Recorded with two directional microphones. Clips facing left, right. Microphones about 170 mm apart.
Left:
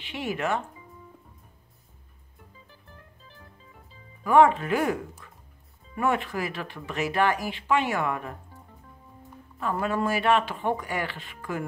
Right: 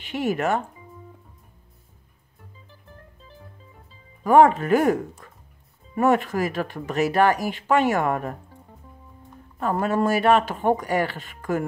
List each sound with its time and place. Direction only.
0.0 s speech: 45° right (ahead or behind)
4.2 s speech: 45° right (ahead or behind)
9.6 s speech: 45° right (ahead or behind)